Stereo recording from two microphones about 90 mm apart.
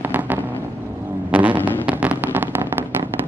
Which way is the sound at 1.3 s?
20° right (ahead or behind).